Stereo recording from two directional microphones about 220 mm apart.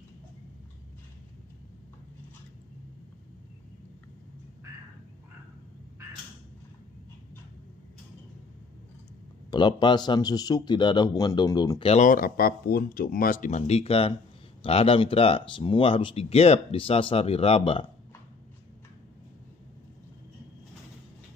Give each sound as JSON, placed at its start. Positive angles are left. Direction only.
{"t": 9.5, "sound": "speech", "side_deg": 20}
{"t": 11.9, "sound": "speech", "side_deg": 35}